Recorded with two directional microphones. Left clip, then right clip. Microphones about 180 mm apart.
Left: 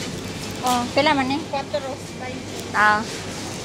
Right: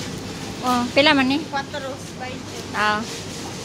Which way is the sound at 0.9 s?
40° right (ahead or behind).